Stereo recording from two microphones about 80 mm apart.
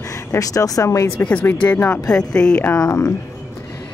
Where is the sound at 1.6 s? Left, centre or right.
Centre.